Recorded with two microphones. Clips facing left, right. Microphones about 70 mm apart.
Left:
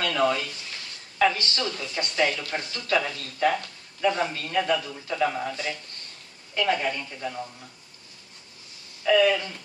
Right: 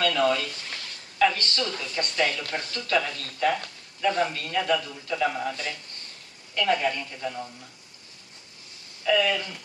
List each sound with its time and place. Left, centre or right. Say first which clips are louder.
0.1 s a woman's voice: even; centre
4.6 s a man's voice: left 1 dB; centre
9.0 s a woman's voice: left 3 dB; centre